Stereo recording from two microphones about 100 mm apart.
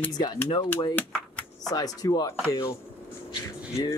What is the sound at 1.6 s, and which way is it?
Speech, 40° left (ahead or behind).